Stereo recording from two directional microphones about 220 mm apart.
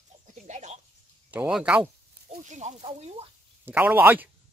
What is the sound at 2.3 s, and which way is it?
Speech, 30° right (ahead or behind).